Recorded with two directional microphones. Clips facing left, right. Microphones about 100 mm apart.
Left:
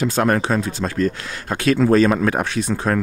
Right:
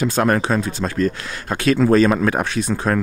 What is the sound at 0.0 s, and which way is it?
Speech, 20° right (ahead or behind).